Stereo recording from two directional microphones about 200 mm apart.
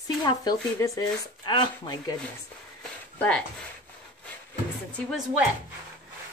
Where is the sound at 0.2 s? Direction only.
20° left (ahead or behind).